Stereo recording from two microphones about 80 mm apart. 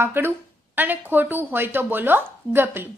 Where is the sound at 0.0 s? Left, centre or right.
Right.